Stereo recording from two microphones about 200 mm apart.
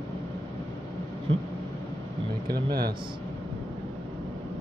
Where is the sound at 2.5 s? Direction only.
50° right (ahead or behind).